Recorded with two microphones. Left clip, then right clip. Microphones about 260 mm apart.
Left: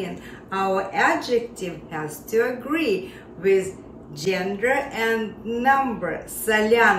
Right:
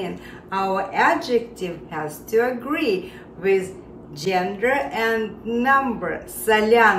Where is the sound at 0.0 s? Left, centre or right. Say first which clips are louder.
Right 2 dB; centre.